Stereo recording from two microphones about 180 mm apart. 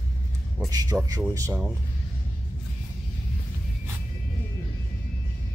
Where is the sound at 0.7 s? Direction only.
20° right (ahead or behind).